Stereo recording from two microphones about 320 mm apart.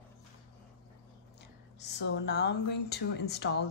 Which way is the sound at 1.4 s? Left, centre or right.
Left.